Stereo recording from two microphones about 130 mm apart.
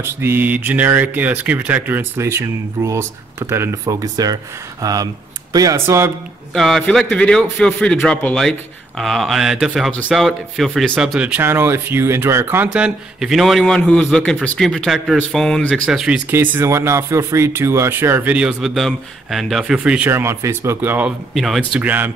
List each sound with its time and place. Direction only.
0.0 s speech: 15° right (ahead or behind)
6.5 s a man's voice: centre (ahead or behind)
11.1 s speech: 10° right (ahead or behind)
12.6 s a man's voice: 5° right (ahead or behind)
16.3 s speech: 15° right (ahead or behind)
20.1 s speech: 20° right (ahead or behind)